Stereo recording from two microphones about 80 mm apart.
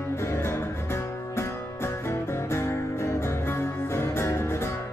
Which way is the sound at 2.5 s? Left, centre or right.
Left.